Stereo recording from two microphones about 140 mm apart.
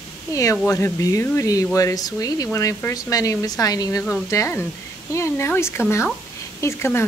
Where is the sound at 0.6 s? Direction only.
20° left (ahead or behind).